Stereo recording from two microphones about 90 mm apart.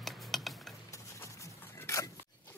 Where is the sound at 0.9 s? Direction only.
35° left (ahead or behind).